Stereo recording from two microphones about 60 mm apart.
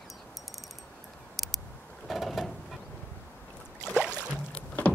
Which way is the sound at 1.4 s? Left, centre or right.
Centre.